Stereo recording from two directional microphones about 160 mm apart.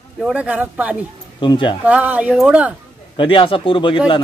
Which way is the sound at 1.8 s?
10° right (ahead or behind).